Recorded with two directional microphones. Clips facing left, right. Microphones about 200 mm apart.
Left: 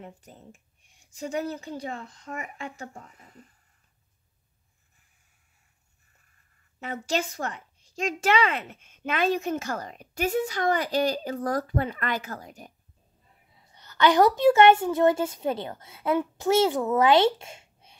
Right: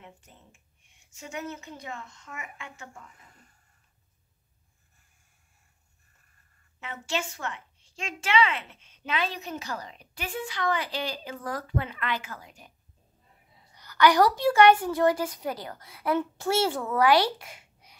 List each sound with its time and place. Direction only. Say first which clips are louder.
0.0 s a woman's voice: left 7 dB; 40° left (ahead or behind)
6.8 s a woman's voice: left 4 dB; 40° left (ahead or behind)
13.7 s a woman's voice: left 1 dB; 25° left (ahead or behind)